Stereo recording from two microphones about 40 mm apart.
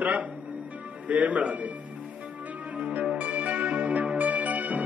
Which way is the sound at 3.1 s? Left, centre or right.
Right.